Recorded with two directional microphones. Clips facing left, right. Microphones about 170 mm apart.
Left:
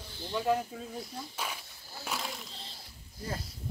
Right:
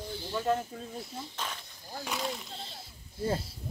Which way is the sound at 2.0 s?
Centre (ahead or behind).